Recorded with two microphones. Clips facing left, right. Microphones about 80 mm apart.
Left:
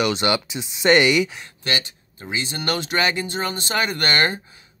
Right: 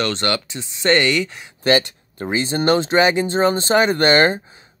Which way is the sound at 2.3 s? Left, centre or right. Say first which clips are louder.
Right 8 dB; right.